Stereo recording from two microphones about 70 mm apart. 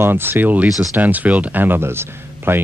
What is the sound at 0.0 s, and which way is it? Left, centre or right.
Speech, right.